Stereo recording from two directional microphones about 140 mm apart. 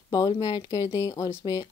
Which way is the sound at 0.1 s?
25° left (ahead or behind).